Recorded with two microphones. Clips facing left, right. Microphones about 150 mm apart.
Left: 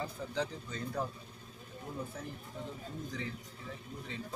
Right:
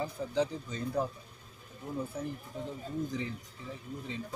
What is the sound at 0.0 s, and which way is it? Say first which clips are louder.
Speech: right 5 dB; 15° right (ahead or behind).